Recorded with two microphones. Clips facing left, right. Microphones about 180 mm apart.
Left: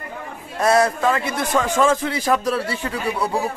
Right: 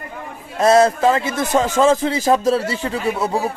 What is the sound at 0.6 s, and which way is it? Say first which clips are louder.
A man's voice: right 4 dB; 25° right (ahead or behind).